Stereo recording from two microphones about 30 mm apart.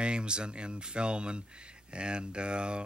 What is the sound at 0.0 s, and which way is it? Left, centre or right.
Speech, right.